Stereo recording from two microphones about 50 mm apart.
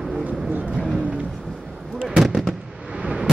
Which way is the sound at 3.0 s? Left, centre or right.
Centre.